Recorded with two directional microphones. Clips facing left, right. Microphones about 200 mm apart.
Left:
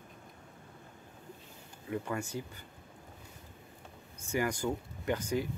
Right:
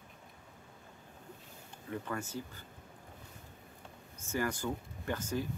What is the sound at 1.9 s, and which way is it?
Speech, 15° left (ahead or behind).